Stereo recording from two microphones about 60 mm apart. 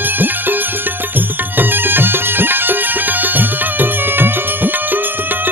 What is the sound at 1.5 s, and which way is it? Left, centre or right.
Music, right.